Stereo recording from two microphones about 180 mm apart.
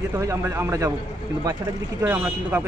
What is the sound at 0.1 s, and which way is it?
Speech, 15° right (ahead or behind).